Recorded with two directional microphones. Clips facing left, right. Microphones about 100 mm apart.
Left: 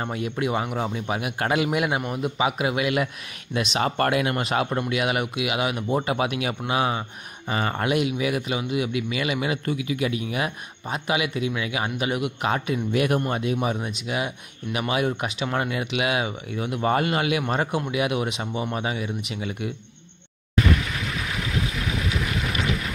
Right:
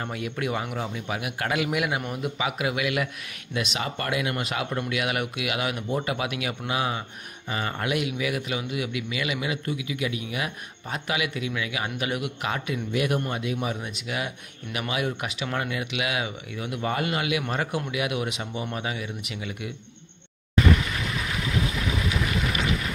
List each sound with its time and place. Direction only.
0.0 s speech: 30° left (ahead or behind)
4.0 s speech: 45° left (ahead or behind)
10.9 s speech: 25° left (ahead or behind)
12.9 s a man's voice: 50° left (ahead or behind)
13.3 s speech: 35° left (ahead or behind)
22.4 s vehicle: 5° right (ahead or behind)